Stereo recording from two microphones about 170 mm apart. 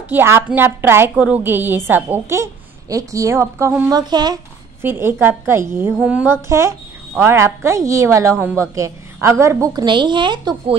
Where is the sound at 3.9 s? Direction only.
25° right (ahead or behind).